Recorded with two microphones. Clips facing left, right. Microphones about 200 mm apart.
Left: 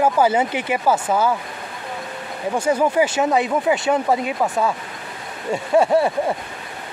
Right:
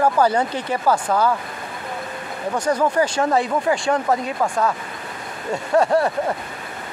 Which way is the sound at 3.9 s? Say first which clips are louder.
Left 1 dB; 10° left (ahead or behind).